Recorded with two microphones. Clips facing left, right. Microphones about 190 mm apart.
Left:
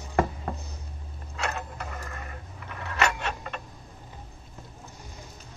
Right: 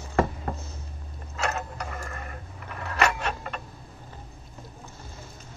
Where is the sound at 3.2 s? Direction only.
50° right (ahead or behind).